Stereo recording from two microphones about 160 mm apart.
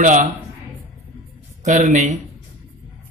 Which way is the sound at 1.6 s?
50° right (ahead or behind).